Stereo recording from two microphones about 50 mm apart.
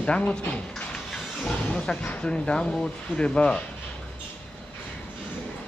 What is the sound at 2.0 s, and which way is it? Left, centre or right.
Speech, left.